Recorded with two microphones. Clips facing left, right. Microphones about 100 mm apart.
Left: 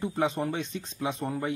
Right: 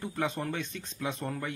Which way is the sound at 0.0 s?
20° left (ahead or behind).